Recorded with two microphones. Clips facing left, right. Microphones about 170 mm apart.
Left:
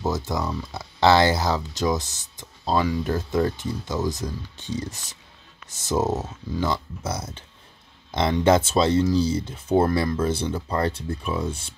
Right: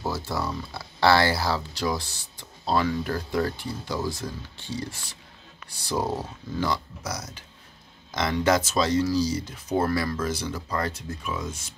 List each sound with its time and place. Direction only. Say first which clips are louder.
0.0 s speech: left 3 dB; 15° left (ahead or behind)